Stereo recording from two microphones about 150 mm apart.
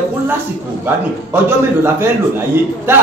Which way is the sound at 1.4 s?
15° right (ahead or behind).